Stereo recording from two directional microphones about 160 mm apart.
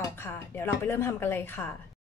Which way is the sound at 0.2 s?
15° left (ahead or behind).